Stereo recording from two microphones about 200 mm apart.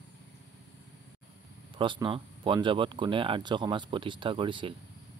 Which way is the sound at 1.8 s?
25° right (ahead or behind).